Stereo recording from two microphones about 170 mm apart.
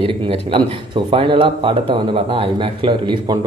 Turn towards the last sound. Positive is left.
turn(degrees=-25)  # may be behind; listen again after turning